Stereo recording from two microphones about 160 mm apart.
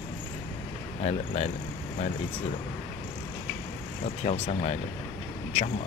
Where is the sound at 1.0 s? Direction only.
45° left (ahead or behind).